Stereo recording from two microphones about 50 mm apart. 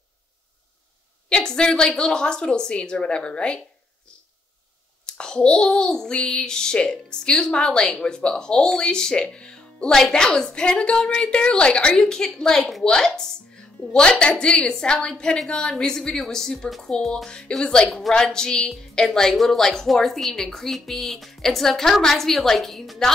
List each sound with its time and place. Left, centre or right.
1.3 s child singing: centre
5.0 s child singing: centre
10.1 s a woman's voice: centre
11.9 s child singing: centre
17.8 s a woman's voice: centre
18.1 s child singing: centre